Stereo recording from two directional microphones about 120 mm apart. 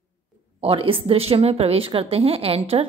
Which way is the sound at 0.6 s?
50° right (ahead or behind).